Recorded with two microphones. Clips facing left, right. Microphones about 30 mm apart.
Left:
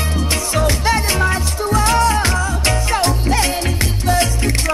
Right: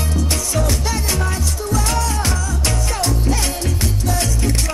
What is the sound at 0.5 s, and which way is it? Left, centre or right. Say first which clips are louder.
Music: left 7 dB; left.